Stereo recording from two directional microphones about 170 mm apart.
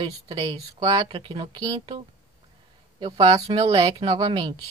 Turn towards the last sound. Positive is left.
turn(degrees=-25)  # may be behind; listen again after turning